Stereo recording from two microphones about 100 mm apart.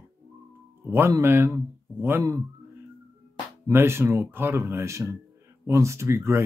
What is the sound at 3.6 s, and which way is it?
Speech, 25° right (ahead or behind).